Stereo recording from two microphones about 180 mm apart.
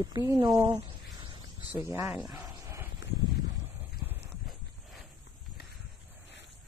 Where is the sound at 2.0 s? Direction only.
5° right (ahead or behind).